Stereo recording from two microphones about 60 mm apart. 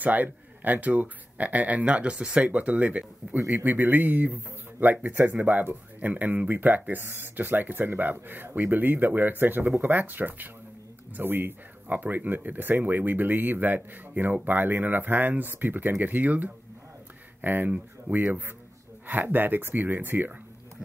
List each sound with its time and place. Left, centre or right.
0.0 s speech: right
3.3 s speech: right